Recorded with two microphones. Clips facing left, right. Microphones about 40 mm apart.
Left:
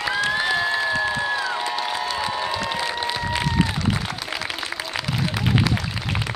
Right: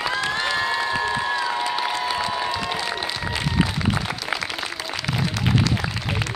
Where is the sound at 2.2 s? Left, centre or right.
Centre.